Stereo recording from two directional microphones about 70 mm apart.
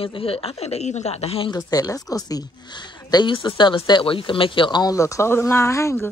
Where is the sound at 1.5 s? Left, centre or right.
Left.